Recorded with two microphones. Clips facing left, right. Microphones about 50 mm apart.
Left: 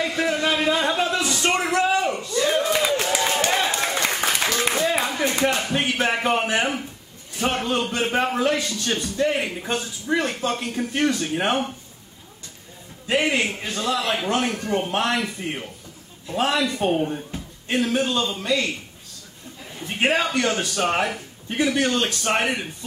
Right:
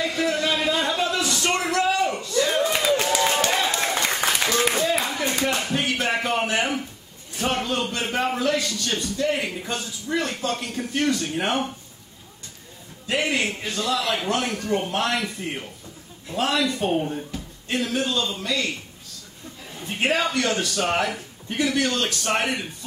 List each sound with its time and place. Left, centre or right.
0.0 s a sound: left
7.3 s a man's voice: left
13.0 s a man's voice: left
16.3 s a man's voice: left
20.0 s a man's voice: left